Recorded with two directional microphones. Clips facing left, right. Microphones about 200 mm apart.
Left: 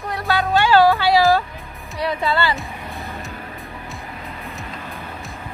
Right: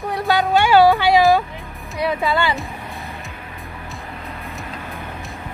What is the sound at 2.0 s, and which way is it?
Speech, 10° right (ahead or behind).